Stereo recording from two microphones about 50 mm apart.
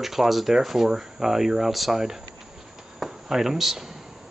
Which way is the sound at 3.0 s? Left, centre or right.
Centre.